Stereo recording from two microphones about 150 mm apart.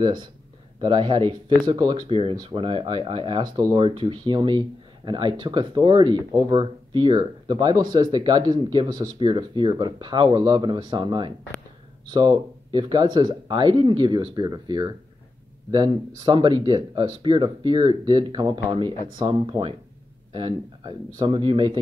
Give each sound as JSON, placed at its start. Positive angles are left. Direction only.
{"t": 0.0, "sound": "speech", "side_deg": -30}